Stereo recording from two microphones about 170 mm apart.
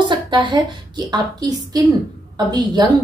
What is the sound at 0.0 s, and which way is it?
A woman's voice, 25° right (ahead or behind).